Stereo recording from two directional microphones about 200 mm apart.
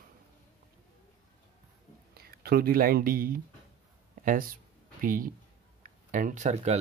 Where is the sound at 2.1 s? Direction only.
50° right (ahead or behind).